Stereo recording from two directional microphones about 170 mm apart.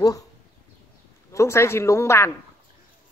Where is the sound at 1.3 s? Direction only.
15° left (ahead or behind).